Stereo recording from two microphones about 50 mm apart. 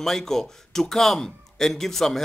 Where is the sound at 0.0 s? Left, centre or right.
Centre.